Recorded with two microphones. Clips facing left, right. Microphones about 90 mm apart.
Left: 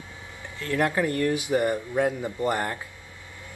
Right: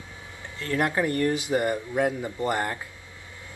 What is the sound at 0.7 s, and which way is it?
Speech, 20° right (ahead or behind).